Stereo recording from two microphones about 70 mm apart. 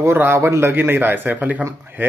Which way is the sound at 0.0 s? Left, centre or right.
Right.